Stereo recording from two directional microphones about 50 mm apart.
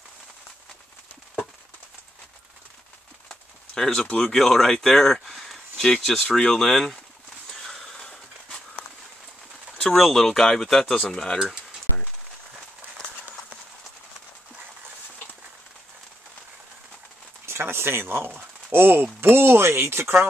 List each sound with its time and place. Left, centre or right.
3.3 s speech: centre
6.2 s speech: centre
7.6 s a sound: centre
9.9 s speech: centre
17.5 s speech: right